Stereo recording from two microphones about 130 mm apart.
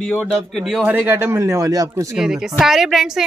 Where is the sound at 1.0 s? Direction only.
15° right (ahead or behind).